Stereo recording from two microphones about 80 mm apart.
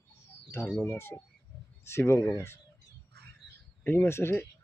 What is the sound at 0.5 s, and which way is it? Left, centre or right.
Speech, left.